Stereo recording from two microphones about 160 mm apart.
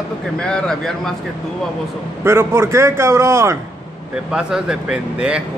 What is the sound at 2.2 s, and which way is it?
A man's voice, 15° right (ahead or behind).